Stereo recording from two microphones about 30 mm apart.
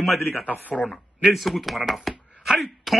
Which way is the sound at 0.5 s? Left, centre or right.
Left.